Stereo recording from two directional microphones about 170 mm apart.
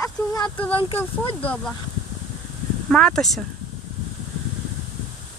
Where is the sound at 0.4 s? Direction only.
10° left (ahead or behind).